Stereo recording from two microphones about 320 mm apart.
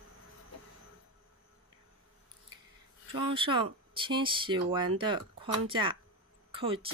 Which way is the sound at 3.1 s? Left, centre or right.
Centre.